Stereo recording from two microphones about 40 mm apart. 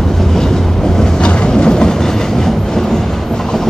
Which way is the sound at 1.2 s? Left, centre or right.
Left.